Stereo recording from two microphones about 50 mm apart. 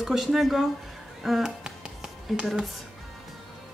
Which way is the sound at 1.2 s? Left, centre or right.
Centre.